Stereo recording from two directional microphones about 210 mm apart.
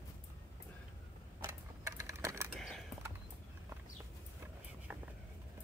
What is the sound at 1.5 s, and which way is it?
Typewriter, 15° right (ahead or behind).